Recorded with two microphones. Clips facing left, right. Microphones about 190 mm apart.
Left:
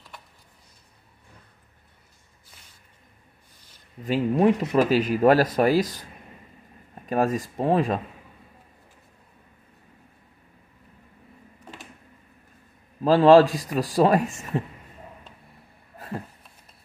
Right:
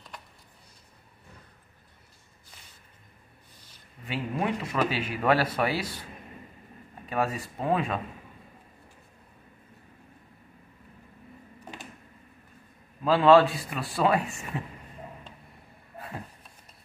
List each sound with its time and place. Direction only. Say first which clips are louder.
4.0 s speech: left 10 dB; 40° left (ahead or behind)
7.1 s speech: left 6 dB; 40° left (ahead or behind)
13.0 s speech: left 4 dB; 40° left (ahead or behind)